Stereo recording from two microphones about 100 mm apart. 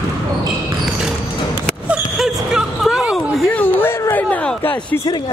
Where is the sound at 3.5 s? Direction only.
20° left (ahead or behind).